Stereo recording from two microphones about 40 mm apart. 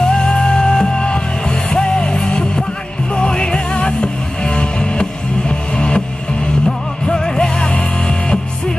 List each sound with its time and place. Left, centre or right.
0.0 s music: left